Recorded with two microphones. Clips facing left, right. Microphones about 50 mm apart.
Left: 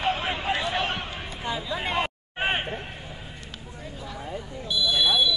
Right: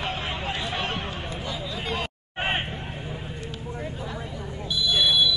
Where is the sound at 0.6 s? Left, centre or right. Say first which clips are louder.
Left 2 dB; centre.